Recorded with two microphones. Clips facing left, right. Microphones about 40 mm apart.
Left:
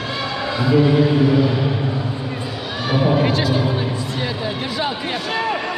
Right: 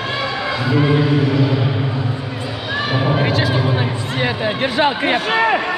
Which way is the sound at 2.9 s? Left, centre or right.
Centre.